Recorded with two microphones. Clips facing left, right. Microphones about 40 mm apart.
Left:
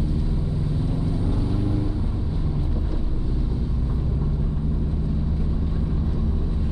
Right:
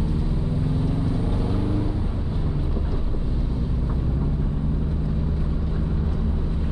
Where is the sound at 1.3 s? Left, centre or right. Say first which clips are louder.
Even; right.